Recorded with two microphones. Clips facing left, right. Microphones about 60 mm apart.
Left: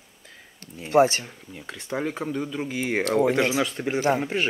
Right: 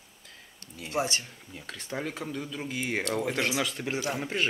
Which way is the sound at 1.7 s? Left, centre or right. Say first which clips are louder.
Left 6 dB; centre.